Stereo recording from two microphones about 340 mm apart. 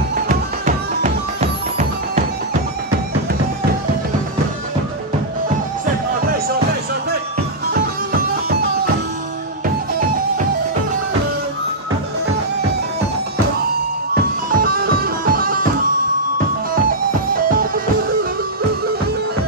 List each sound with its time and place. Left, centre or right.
0.1 s music: right
7.7 s music: right
14.5 s music: right
17.3 s music: right